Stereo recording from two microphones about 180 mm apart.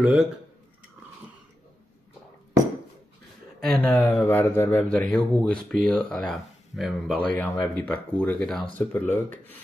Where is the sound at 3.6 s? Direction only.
5° left (ahead or behind).